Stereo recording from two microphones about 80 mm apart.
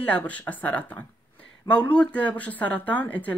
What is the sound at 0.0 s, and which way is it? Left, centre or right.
Speech, centre.